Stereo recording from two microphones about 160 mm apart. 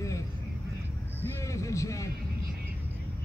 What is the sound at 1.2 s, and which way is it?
Speech, 20° left (ahead or behind).